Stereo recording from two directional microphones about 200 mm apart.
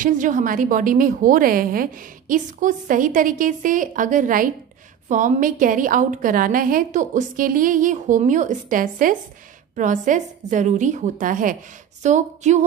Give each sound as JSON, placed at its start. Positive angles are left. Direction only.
{"t": 0.0, "sound": "a woman's voice", "side_deg": -40}